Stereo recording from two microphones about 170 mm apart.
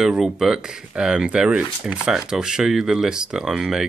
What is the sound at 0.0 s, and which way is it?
Speech, 5° right (ahead or behind).